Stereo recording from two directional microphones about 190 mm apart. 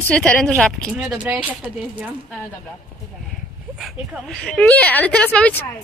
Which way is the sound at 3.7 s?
Centre (ahead or behind).